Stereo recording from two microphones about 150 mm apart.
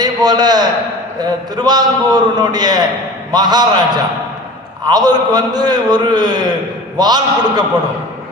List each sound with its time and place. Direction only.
0.0 s a man's voice: 25° right (ahead or behind)